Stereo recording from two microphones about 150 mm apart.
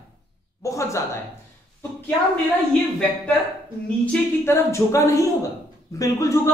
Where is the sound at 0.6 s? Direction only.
20° left (ahead or behind).